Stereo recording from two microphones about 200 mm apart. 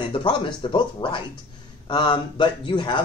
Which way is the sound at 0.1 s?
25° left (ahead or behind).